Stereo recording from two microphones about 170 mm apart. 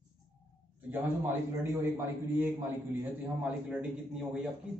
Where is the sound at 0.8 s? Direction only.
10° right (ahead or behind).